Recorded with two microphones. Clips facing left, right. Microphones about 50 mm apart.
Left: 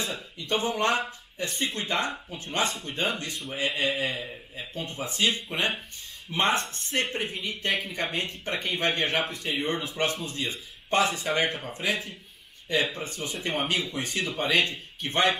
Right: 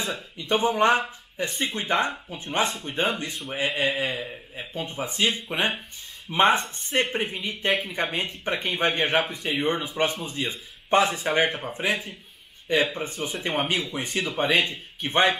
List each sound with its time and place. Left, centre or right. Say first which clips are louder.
0.5 s speech: right 5 dB; right
4.6 s speech: right 3 dB; right